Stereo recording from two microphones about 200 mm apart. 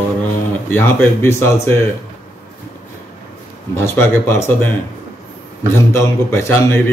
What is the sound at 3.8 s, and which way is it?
Speech, 10° left (ahead or behind).